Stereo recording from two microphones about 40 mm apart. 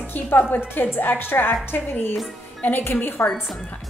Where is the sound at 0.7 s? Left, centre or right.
Left.